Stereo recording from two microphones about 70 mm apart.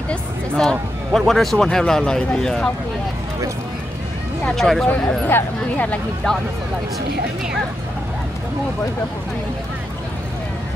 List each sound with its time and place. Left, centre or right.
0.1 s speech: centre
4.5 s speech: centre
5.2 s speech: left
6.3 s speech: centre